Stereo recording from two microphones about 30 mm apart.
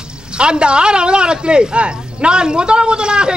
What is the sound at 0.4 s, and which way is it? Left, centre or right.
A woman's voice, right.